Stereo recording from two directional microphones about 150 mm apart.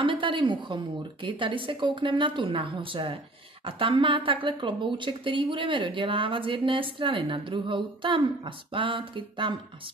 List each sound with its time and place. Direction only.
0.0 s speech: 35° right (ahead or behind)